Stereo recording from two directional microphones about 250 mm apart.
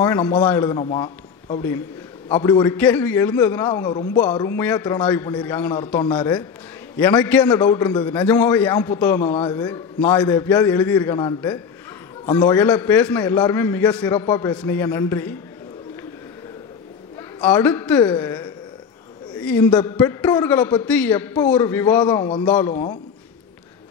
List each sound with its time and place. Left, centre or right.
0.0 s a man's voice: centre
17.4 s a man's voice: centre